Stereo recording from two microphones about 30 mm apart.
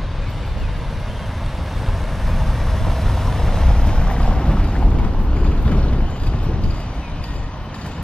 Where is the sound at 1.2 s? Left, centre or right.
Centre; by 6.8 s left.